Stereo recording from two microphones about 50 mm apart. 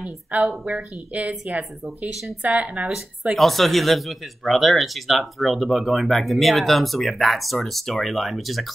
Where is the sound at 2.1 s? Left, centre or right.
Centre.